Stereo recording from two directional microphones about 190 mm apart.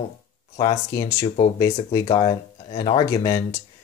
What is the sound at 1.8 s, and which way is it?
Speech, 25° left (ahead or behind).